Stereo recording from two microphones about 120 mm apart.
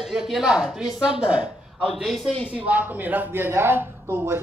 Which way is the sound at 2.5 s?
15° right (ahead or behind).